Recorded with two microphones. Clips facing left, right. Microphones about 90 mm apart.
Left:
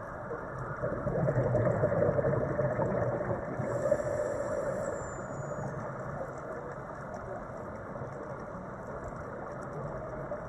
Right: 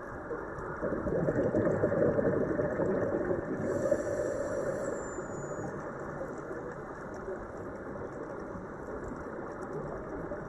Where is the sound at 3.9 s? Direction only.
90° right.